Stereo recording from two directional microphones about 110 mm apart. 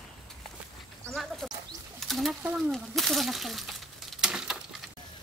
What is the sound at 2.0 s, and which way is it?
Pigeon, centre (ahead or behind).